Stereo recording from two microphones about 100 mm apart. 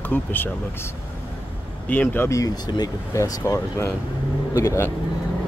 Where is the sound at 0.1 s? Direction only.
20° left (ahead or behind).